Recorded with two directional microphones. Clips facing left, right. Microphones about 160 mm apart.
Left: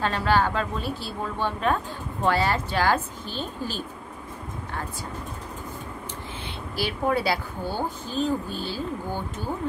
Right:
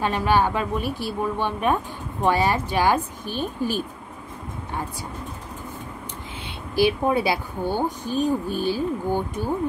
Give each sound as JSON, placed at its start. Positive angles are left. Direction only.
{"t": 0.0, "sound": "speech", "side_deg": -15}
{"t": 6.8, "sound": "speech", "side_deg": -15}